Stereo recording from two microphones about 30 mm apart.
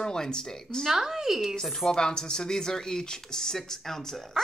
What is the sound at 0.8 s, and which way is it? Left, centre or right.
Speech, centre.